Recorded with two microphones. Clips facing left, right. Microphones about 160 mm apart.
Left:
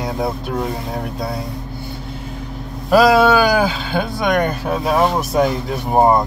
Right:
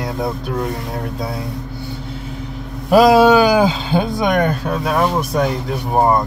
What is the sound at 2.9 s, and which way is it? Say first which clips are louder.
Speech: right 2 dB; 20° right (ahead or behind).